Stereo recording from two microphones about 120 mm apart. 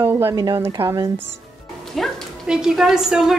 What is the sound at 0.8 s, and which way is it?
Speech, 50° right (ahead or behind).